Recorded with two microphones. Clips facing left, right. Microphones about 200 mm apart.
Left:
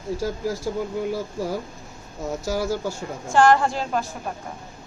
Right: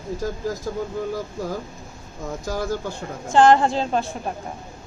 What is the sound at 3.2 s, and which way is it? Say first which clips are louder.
Speech: right 2 dB; 20° right (ahead or behind).